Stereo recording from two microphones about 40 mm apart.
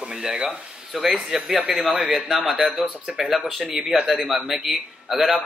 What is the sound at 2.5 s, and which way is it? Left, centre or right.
Speech, centre.